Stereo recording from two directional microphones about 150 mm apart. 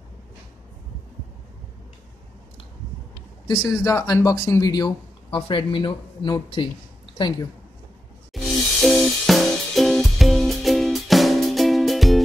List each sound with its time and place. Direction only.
3.4 s speech: 25° left (ahead or behind)
8.3 s music: centre (ahead or behind)